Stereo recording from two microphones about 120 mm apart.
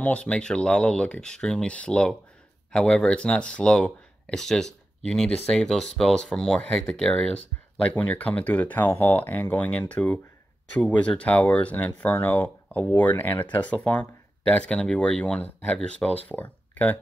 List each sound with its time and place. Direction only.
0.0 s speech: 10° left (ahead or behind)